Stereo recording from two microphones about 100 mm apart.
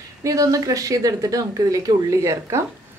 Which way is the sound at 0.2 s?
35° right (ahead or behind).